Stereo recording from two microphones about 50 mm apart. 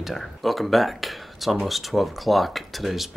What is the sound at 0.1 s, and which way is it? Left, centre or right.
Speech, centre.